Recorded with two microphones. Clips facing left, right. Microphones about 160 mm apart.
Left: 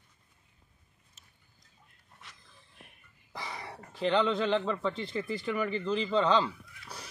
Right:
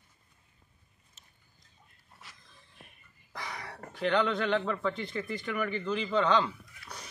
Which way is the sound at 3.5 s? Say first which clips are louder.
Even; 25° left (ahead or behind).